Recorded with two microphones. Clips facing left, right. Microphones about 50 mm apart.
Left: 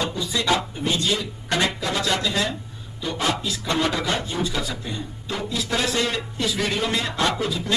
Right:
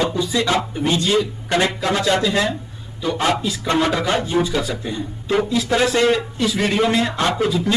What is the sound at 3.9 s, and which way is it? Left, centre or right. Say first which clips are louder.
Speech: right 6 dB; right.